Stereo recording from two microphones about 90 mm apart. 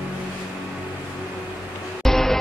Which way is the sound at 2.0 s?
5° left (ahead or behind).